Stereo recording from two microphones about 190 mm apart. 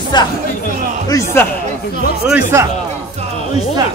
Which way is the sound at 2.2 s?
10° right (ahead or behind).